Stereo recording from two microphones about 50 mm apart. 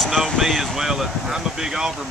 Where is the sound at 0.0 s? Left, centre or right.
Centre.